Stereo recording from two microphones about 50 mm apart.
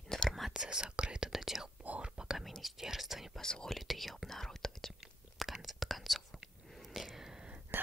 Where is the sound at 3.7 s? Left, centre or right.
Centre.